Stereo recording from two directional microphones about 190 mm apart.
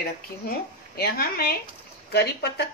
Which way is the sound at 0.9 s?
55° left (ahead or behind).